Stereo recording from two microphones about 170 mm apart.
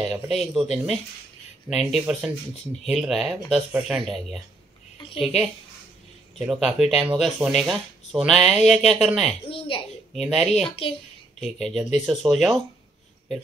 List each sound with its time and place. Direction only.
0.0 s speech: centre (ahead or behind)
9.5 s a child's voice: 35° left (ahead or behind)
10.1 s speech: centre (ahead or behind)
10.8 s a child's voice: 30° left (ahead or behind)
11.3 s speech: centre (ahead or behind)